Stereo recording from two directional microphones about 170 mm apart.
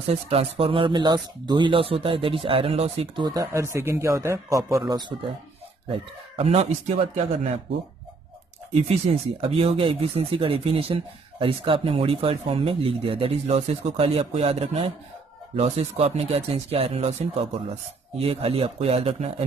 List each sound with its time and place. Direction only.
0.1 s speech: 35° right (ahead or behind)
3.3 s speech: 20° right (ahead or behind)
5.9 s speech: 35° right (ahead or behind)
8.8 s speech: 40° right (ahead or behind)